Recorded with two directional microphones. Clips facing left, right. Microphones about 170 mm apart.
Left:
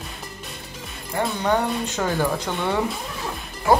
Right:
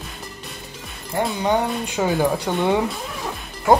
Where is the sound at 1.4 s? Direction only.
10° right (ahead or behind).